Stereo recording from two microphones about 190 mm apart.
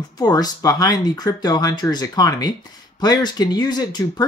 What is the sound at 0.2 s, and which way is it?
Speech, 20° left (ahead or behind).